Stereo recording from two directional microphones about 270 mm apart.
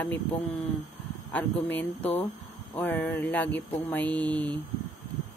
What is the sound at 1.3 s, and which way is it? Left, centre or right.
Speech, centre.